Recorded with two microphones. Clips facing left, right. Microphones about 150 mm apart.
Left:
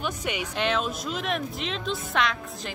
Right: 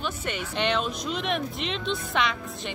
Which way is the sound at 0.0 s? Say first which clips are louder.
Left 1 dB; 10° left (ahead or behind).